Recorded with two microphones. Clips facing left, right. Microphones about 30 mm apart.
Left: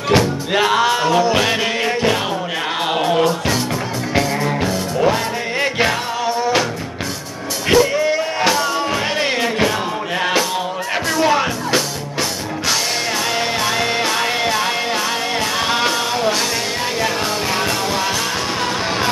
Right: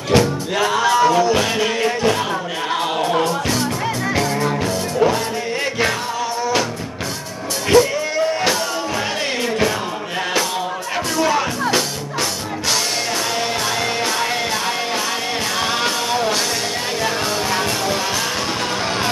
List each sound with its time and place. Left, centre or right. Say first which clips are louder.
0.1 s music: even; left
7.7 s music: left 1 dB; centre
11.1 s music: left 2 dB; centre
13.7 s music: left 2 dB; centre
15.6 s music: left 2 dB; centre